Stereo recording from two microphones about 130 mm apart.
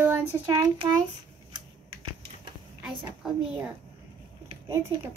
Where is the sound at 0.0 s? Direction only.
15° right (ahead or behind).